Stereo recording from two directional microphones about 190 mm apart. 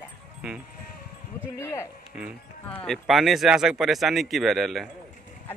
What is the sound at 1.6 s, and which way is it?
Speech, 15° left (ahead or behind).